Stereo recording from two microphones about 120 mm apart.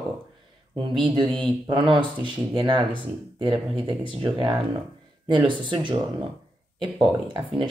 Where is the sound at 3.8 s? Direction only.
40° right (ahead or behind).